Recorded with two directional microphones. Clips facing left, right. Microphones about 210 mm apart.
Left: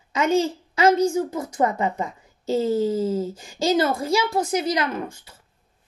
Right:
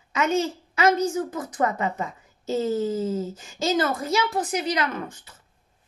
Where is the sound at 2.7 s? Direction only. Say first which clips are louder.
Left 3 dB; 10° left (ahead or behind).